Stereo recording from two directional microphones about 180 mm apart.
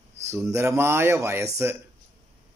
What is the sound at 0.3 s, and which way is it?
Speech, 15° right (ahead or behind).